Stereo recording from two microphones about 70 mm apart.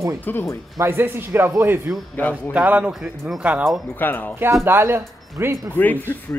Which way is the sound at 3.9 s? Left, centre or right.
Left.